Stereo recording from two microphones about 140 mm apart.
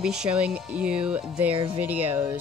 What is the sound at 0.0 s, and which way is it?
Speech, 5° right (ahead or behind).